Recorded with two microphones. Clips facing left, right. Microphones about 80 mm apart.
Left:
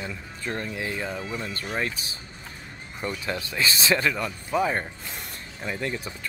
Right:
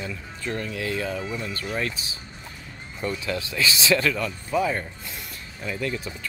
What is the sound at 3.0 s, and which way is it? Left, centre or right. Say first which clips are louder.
Speech: right 3 dB; left.